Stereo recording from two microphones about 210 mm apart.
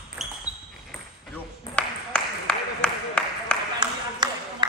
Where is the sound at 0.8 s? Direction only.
5° left (ahead or behind).